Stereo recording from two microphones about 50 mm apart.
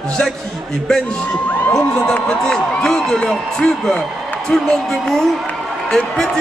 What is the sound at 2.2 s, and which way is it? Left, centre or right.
A man's voice, centre.